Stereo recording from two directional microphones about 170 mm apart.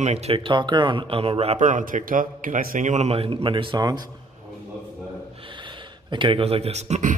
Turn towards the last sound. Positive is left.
turn(degrees=-40)  # may be behind; listen again after turning